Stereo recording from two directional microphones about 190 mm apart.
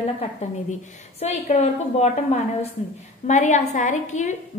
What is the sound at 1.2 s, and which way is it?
A woman's voice, 35° left (ahead or behind).